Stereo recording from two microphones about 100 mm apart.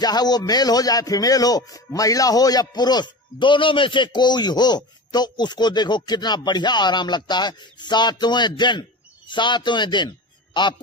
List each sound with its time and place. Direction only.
0.0 s a man's voice: 40° left (ahead or behind)